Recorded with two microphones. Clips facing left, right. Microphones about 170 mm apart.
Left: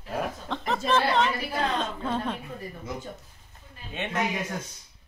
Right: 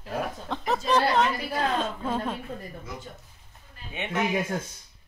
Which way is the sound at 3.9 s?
10° right (ahead or behind).